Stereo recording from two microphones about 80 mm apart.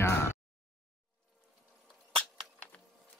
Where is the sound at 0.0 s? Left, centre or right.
Left.